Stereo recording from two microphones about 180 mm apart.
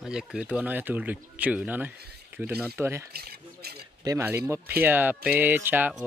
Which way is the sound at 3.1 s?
60° right (ahead or behind).